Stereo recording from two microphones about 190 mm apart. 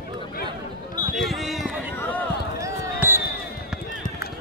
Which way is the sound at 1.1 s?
Centre (ahead or behind).